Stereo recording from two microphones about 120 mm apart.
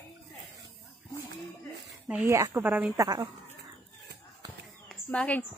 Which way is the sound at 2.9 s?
30° right (ahead or behind).